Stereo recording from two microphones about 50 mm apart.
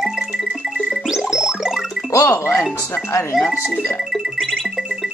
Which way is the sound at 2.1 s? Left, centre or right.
Left.